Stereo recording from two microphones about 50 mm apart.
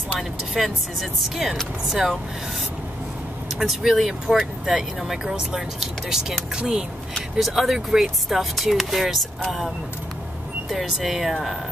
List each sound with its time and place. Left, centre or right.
0.6 s speech: centre
3.5 s speech: centre
7.3 s speech: centre
10.7 s speech: centre